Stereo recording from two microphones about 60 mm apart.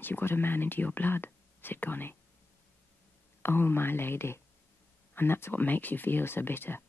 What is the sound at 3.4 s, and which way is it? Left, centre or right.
Speech, left.